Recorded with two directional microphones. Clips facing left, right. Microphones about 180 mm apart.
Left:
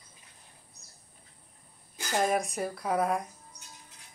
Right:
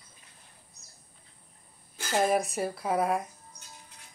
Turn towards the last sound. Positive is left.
turn(degrees=-5)  # may be behind; listen again after turning